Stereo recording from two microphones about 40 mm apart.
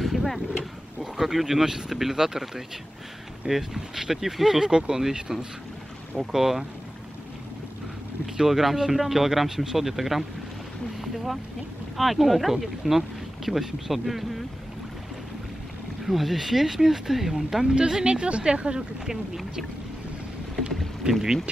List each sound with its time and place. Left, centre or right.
0.0 s a sound: centre
1.1 s speech: centre
8.4 s speech: centre
11.0 s boat: centre
12.0 s speech: centre
16.0 s speech: centre
17.7 s speech: right
21.1 s speech: centre